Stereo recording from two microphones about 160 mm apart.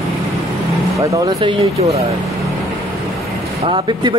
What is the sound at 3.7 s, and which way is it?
Speech, 30° right (ahead or behind).